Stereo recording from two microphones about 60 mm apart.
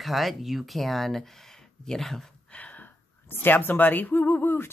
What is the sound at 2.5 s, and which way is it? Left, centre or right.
Gasp, left.